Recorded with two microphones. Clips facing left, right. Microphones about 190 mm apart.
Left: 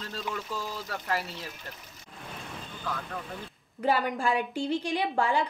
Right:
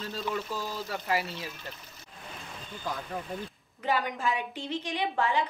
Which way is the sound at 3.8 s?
40° left (ahead or behind).